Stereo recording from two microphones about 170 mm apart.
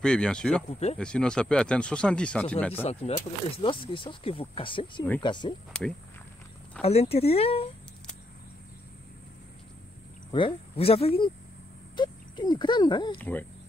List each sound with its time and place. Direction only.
0.0 s speech: 5° left (ahead or behind)
0.7 s speech: 40° left (ahead or behind)
0.9 s speech: 5° left (ahead or behind)
2.8 s speech: 35° left (ahead or behind)
6.8 s speech: 35° left (ahead or behind)
10.3 s speech: 30° left (ahead or behind)
13.2 s speech: 10° left (ahead or behind)